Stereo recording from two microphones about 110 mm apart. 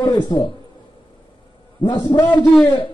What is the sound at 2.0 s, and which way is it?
Speech, 35° left (ahead or behind).